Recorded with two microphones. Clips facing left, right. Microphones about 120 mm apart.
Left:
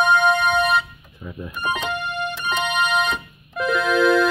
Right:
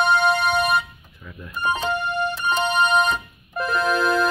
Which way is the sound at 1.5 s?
30° right (ahead or behind).